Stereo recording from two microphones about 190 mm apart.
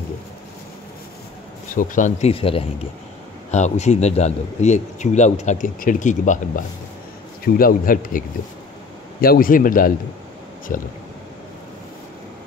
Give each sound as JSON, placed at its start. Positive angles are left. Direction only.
{"t": 1.8, "sound": "a man's voice", "side_deg": 40}